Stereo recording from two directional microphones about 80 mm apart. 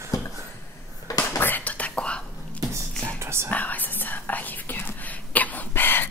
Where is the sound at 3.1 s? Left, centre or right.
Right.